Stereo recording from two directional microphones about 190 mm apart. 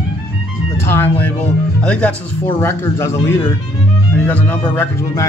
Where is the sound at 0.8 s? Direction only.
10° left (ahead or behind).